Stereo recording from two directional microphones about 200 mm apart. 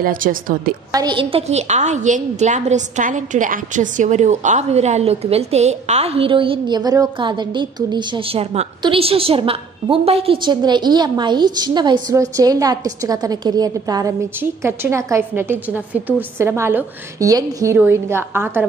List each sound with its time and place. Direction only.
0.0 s a woman's voice: 45° right (ahead or behind)
0.9 s a woman's voice: 25° right (ahead or behind)